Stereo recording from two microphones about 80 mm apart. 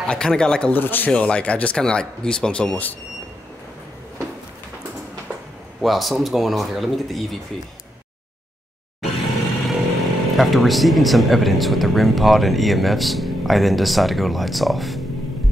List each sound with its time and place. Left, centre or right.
0.0 s speech: centre
0.7 s speech: left
5.8 s speech: centre
9.0 s vehicle: centre
10.3 s speech: centre